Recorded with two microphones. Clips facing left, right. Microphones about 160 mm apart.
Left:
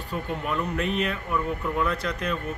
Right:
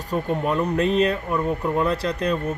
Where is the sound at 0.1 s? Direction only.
40° right (ahead or behind).